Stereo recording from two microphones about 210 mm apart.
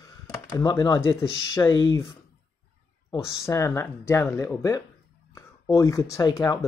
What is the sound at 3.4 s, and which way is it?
Speech, 15° left (ahead or behind).